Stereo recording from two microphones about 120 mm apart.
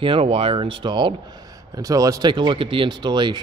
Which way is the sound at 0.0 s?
50° right (ahead or behind).